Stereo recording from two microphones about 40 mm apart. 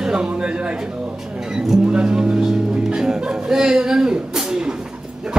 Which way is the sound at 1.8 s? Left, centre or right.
Right.